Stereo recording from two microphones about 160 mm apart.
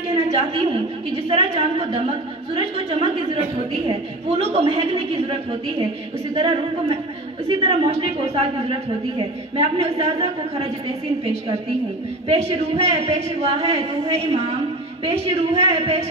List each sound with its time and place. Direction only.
0.1 s a sound: 40° right (ahead or behind)
1.1 s a woman's voice: 40° right (ahead or behind)
12.3 s a woman's voice: 40° right (ahead or behind)